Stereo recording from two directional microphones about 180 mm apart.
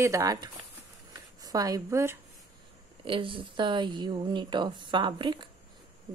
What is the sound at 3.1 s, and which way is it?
Speech, 30° right (ahead or behind).